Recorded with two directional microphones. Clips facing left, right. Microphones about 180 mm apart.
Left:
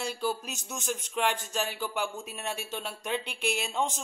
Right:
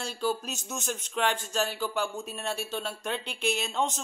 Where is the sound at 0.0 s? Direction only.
15° left (ahead or behind).